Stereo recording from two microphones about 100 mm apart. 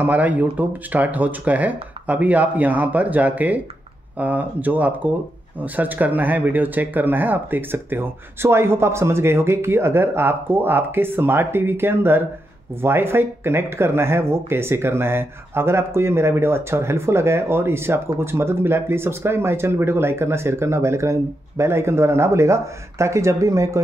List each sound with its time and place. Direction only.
0.0 s speech: 15° right (ahead or behind)